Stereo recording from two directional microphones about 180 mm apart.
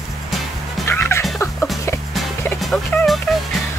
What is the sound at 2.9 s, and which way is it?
Music, 5° left (ahead or behind).